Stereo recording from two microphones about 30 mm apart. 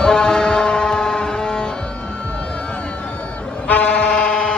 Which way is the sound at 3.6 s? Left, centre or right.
Left.